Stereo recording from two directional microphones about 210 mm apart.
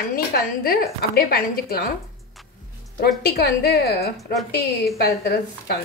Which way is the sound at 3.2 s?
50° left (ahead or behind).